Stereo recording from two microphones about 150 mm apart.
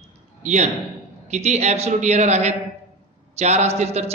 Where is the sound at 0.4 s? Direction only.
50° right (ahead or behind).